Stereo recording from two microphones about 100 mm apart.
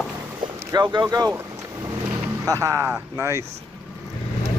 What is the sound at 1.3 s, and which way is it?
Vehicle, 25° right (ahead or behind).